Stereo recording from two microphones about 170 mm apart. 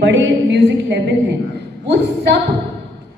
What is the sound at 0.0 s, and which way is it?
A woman's voice, 90° right.